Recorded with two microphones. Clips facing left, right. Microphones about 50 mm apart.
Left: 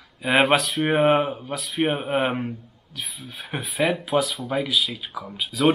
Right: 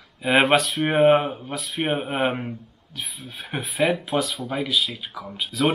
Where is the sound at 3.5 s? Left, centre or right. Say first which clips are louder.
Right 1 dB; centre.